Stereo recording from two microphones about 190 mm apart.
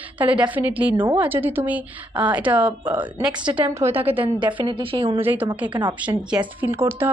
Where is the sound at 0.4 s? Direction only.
10° right (ahead or behind).